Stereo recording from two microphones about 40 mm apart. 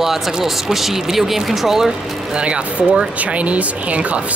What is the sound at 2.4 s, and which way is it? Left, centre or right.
Speech, right.